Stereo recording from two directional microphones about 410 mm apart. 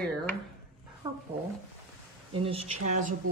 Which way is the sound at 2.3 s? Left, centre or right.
Centre.